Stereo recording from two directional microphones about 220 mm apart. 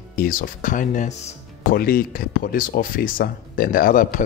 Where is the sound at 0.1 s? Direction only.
40° left (ahead or behind).